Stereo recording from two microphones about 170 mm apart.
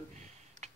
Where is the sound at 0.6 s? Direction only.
40° right (ahead or behind).